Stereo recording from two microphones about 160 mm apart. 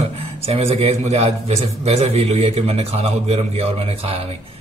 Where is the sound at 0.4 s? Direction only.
40° right (ahead or behind).